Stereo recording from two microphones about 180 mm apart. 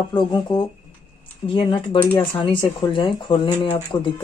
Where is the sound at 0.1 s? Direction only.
25° left (ahead or behind).